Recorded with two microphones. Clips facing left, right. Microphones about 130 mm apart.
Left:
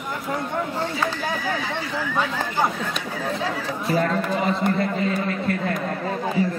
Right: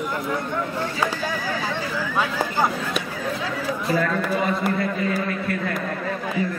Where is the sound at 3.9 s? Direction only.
30° left (ahead or behind).